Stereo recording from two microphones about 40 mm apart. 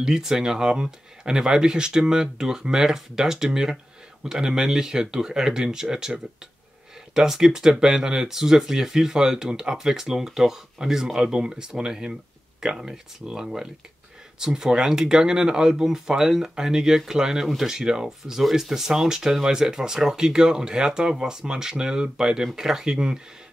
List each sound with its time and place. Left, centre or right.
0.0 s speech: centre